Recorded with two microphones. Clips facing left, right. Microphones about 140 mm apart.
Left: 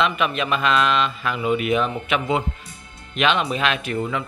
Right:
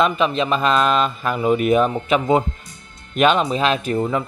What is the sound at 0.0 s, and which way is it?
Speech, 35° right (ahead or behind).